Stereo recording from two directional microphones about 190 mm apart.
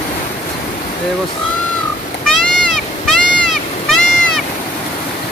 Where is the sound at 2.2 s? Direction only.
Centre (ahead or behind).